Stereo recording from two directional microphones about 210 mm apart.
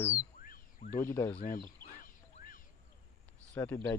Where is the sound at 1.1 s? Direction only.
10° left (ahead or behind).